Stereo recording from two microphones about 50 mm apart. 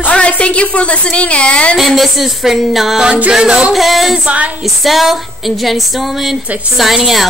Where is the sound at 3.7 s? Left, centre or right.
Centre.